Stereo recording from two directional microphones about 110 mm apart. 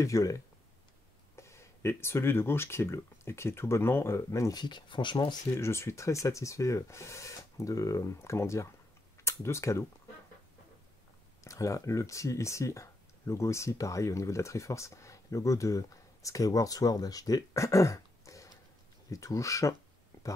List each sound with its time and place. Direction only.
0.0 s speech: 30° left (ahead or behind)
5.6 s speech: 25° left (ahead or behind)
11.4 s speech: 30° left (ahead or behind)